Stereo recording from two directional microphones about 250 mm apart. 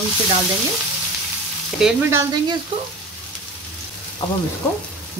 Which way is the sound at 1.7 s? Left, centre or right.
Centre.